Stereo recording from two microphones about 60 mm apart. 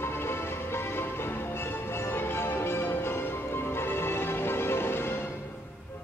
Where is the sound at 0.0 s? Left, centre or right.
Left.